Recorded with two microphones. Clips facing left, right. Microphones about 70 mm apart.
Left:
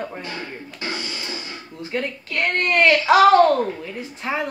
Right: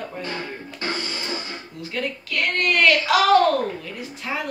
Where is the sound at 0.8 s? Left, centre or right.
Right.